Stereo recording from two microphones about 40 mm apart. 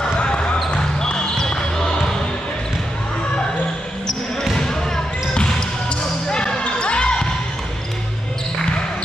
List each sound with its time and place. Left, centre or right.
0.2 s basketball bounce: left
4.6 s basketball bounce: centre